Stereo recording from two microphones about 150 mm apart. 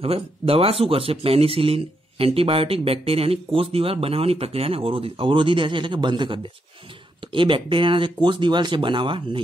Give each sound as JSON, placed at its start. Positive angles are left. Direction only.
{"t": 0.0, "sound": "speech", "side_deg": -40}